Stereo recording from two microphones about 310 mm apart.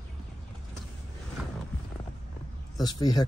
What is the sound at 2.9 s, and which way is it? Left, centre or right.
Speech, centre.